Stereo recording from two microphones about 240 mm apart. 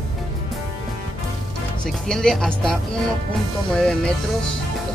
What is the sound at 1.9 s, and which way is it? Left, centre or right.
Speech, centre.